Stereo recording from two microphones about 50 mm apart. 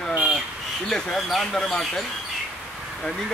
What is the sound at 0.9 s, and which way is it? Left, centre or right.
Speech, centre.